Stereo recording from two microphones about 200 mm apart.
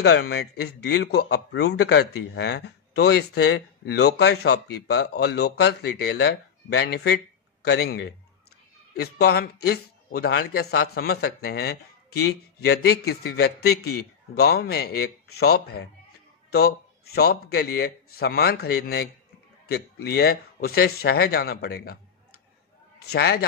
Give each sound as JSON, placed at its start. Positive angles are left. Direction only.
{"t": 0.0, "sound": "a man's voice", "side_deg": 55}
{"t": 23.1, "sound": "speech", "side_deg": 55}